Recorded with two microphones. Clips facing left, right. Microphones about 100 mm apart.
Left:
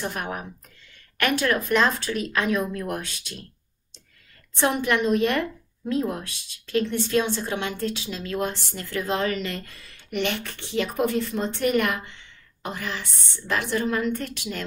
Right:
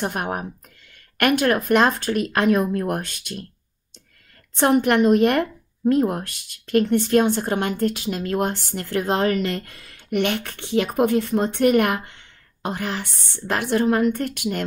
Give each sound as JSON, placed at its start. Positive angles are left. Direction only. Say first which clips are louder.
{"t": 0.0, "sound": "a woman's voice", "louder": "right 5 dB", "side_deg": -50}
{"t": 4.6, "sound": "a woman's voice", "louder": "right 6 dB", "side_deg": -55}